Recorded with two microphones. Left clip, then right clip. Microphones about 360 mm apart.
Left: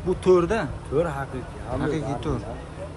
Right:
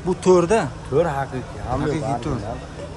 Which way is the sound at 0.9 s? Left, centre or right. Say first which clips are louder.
Right 5 dB; right.